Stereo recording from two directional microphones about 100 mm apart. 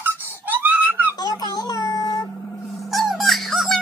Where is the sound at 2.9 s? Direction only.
Centre (ahead or behind).